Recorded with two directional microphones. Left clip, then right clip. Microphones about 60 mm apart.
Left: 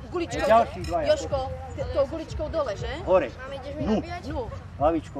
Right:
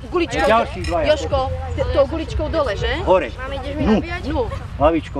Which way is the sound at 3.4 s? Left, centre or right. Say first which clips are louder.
Right 9 dB; centre.